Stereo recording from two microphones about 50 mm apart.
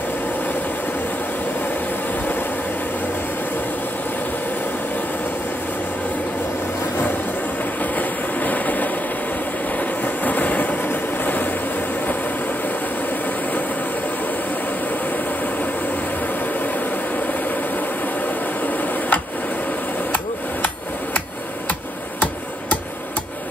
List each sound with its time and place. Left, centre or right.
7.8 s train: left
9.7 s vehicle: left
17.3 s vehicle: left
18.8 s a sound: left